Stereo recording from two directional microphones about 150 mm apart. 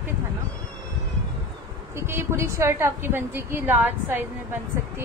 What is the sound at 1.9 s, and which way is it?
A woman's voice, 15° right (ahead or behind).